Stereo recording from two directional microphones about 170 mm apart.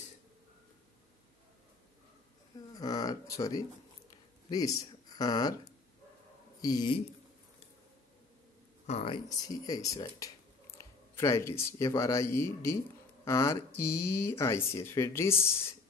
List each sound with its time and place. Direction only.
2.7 s speech: 20° left (ahead or behind)
6.6 s speech: 25° left (ahead or behind)
8.8 s speech: 35° left (ahead or behind); by 15.7 s 15° left (ahead or behind)